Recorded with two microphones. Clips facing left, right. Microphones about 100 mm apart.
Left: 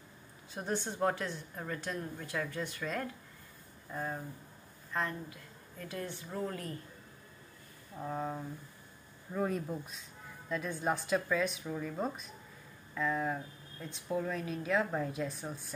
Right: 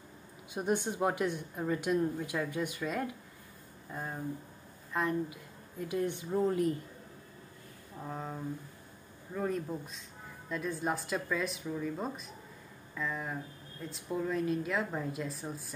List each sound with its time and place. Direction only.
0.5 s speech: 15° right (ahead or behind)
8.1 s a woman's voice: 5° left (ahead or behind)